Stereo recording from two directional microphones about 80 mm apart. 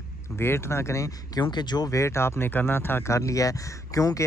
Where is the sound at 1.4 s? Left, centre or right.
Left.